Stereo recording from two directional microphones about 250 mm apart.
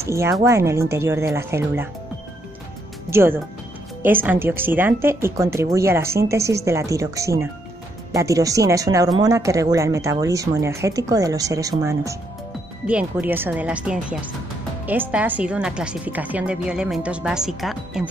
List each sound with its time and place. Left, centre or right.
0.0 s speech: centre
3.1 s speech: centre